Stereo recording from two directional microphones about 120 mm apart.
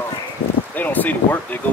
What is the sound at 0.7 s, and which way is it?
Speech, 15° left (ahead or behind).